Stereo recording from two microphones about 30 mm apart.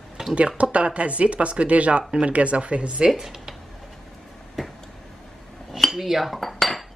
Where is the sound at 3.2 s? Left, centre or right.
Centre.